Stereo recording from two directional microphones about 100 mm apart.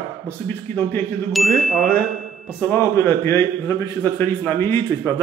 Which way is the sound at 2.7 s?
25° left (ahead or behind).